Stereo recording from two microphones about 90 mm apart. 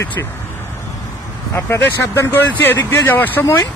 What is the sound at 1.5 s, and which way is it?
Speech, 30° left (ahead or behind).